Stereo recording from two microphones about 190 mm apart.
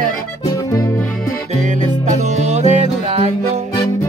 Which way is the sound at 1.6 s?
40° right (ahead or behind).